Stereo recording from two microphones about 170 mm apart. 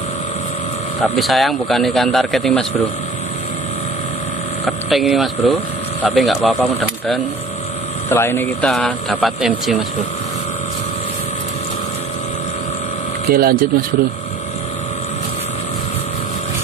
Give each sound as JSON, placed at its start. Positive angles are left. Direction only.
{"t": 1.0, "sound": "speech", "side_deg": 0}
{"t": 4.6, "sound": "speech", "side_deg": 0}
{"t": 8.1, "sound": "speech", "side_deg": 15}
{"t": 13.3, "sound": "speech", "side_deg": -60}